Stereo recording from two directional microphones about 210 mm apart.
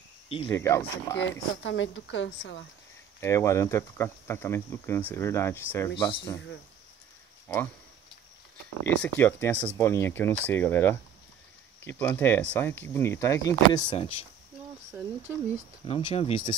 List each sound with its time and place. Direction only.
0.5 s speech: 15° left (ahead or behind)
1.6 s speech: 60° left (ahead or behind)
3.2 s speech: 15° left (ahead or behind)
5.9 s speech: 20° left (ahead or behind)
7.4 s speech: 10° left (ahead or behind)
8.8 s speech: 10° left (ahead or behind); by 14.2 s 25° left (ahead or behind)
14.9 s speech: 10° right (ahead or behind)
15.8 s speech: 25° left (ahead or behind)